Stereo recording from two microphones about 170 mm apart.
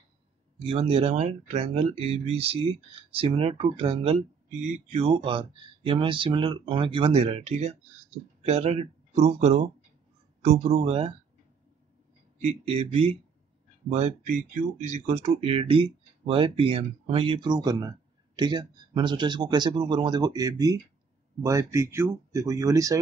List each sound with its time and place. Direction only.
0.7 s speech: 35° right (ahead or behind)
12.4 s speech: 35° right (ahead or behind); by 22.9 s 20° right (ahead or behind)